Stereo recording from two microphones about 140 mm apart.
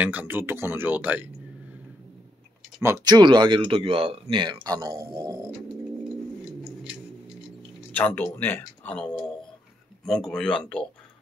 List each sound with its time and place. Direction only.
0.0 s speech: 10° right (ahead or behind)
2.8 s speech: 25° right (ahead or behind)
7.9 s speech: 15° left (ahead or behind)